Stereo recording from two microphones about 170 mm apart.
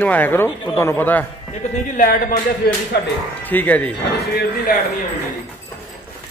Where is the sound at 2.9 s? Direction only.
75° left (ahead or behind).